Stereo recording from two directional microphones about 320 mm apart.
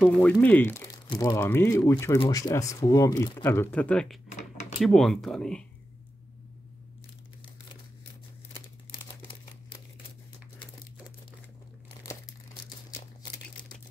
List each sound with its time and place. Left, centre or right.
0.0 s speech: centre
4.3 s a sound: left
4.7 s speech: centre
8.9 s crumpling: centre
13.2 s crumpling: centre